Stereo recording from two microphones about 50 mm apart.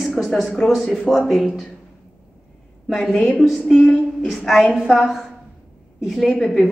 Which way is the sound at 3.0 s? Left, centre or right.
Centre.